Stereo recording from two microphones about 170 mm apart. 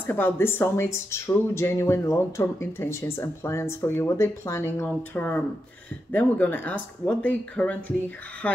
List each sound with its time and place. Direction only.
0.0 s speech: 10° left (ahead or behind)